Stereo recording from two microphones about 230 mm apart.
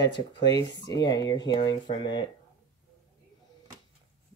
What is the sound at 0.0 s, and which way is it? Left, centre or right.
Speech, left.